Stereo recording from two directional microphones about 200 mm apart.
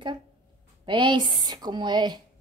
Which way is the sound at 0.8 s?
25° right (ahead or behind).